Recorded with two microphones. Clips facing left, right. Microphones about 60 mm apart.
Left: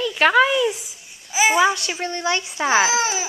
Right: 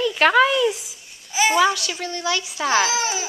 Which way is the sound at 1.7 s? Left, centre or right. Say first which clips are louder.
Left 2 dB; left.